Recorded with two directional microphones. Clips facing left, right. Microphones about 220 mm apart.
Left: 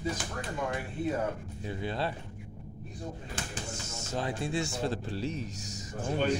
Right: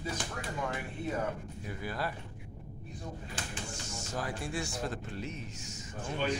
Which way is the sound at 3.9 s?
25° left (ahead or behind).